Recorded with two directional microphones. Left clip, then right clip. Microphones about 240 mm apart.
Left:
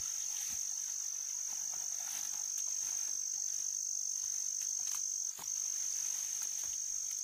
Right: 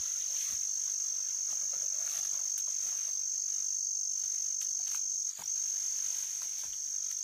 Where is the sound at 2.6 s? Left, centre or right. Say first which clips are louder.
Right 3 dB; centre.